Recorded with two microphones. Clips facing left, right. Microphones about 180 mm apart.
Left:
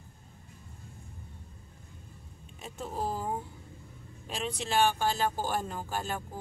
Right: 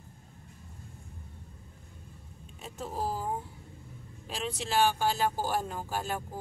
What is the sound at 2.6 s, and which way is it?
Vehicle, centre (ahead or behind).